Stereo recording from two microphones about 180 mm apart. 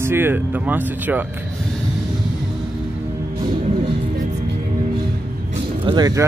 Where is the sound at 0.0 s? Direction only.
10° right (ahead or behind).